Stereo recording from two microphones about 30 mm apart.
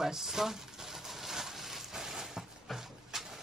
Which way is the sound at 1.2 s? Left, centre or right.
Centre.